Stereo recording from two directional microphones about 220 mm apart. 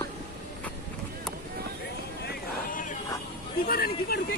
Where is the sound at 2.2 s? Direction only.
35° left (ahead or behind).